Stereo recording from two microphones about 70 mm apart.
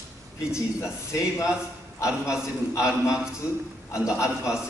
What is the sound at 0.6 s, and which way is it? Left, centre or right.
Speech, left.